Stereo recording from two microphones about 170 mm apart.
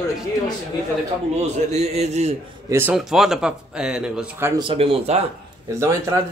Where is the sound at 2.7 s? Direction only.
10° right (ahead or behind).